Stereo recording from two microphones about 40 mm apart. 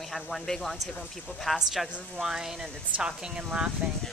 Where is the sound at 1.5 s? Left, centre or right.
Centre; by 3.7 s right.